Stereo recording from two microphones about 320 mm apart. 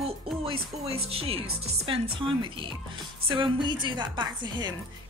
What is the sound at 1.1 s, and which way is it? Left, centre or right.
A woman's voice, centre.